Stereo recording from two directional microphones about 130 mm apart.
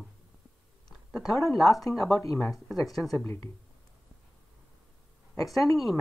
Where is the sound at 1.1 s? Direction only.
Centre (ahead or behind).